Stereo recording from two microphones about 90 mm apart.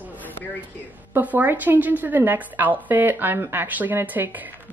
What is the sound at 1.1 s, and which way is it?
A woman's voice, 20° right (ahead or behind).